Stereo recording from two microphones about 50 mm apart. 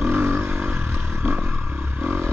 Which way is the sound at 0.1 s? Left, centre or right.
Right.